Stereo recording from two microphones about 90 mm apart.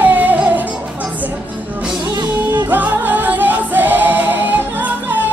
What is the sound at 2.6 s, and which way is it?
Music, 20° right (ahead or behind).